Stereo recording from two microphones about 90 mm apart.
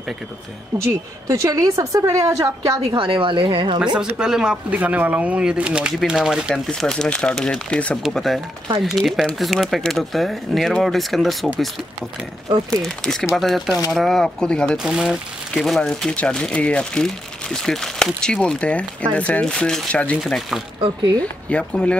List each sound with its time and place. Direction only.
1.2 s a woman's voice: 40° right (ahead or behind)
3.0 s a woman's voice: 75° right (ahead or behind)
4.0 s speech: 5° right (ahead or behind)
6.5 s speech: 5° left (ahead or behind)
8.1 s speech: centre (ahead or behind)
12.8 s speech: 5° left (ahead or behind)
14.8 s speech: 10° right (ahead or behind)
15.5 s speech: 5° left (ahead or behind)
20.2 s speech: centre (ahead or behind)
21.2 s speech: 15° left (ahead or behind)